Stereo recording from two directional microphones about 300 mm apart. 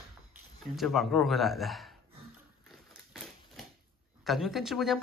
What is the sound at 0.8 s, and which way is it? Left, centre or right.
Speech, centre.